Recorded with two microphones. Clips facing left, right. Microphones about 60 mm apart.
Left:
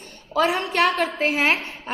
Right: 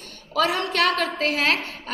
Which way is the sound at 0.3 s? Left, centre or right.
Centre.